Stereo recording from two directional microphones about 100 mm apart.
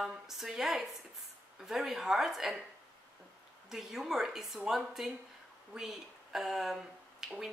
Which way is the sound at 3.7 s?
5° right (ahead or behind).